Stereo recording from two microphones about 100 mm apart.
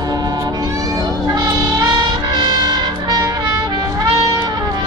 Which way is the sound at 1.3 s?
40° right (ahead or behind).